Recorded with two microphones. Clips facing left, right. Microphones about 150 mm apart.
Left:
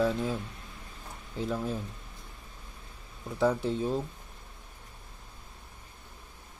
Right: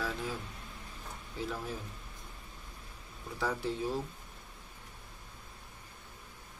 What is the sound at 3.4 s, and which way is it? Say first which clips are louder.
Speech: left 7 dB; 20° left (ahead or behind).